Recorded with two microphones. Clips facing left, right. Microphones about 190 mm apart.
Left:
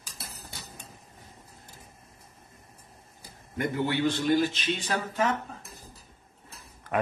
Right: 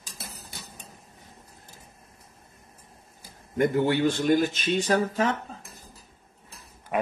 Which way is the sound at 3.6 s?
45° right (ahead or behind).